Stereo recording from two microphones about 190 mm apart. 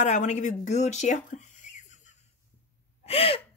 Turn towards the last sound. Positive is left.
turn(degrees=30)  # may be behind; listen again after turning